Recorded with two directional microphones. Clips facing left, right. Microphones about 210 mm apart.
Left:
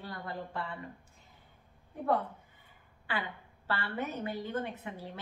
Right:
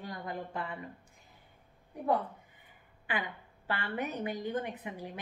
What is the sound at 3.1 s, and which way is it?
A woman's voice, 15° right (ahead or behind).